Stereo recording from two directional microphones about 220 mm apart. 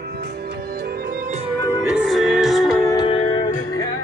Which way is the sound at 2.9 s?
20° left (ahead or behind).